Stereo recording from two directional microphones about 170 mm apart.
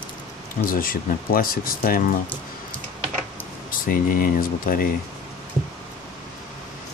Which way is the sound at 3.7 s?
55° left (ahead or behind).